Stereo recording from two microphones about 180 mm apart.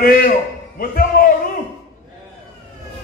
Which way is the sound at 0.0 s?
55° left (ahead or behind).